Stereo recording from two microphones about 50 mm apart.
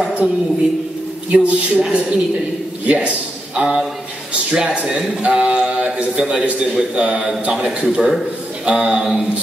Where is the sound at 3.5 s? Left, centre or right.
Centre.